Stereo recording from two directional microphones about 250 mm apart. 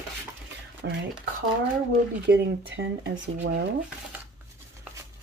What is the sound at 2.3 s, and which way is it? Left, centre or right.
Speech, right.